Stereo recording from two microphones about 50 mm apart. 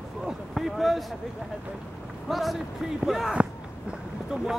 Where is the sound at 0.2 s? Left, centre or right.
Centre.